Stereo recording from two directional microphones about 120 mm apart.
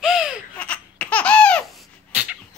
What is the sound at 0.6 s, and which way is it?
Laughter, 10° left (ahead or behind).